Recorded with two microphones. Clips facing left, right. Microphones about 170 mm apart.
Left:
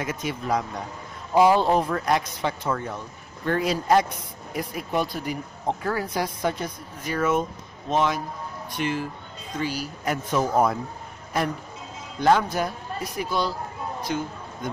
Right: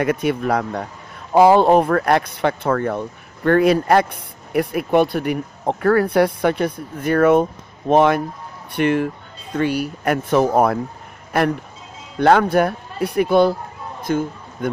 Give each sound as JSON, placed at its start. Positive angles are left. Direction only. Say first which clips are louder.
{"t": 0.0, "sound": "speech", "louder": "right 10 dB", "side_deg": -60}
{"t": 12.2, "sound": "speech", "louder": "right 7 dB", "side_deg": -60}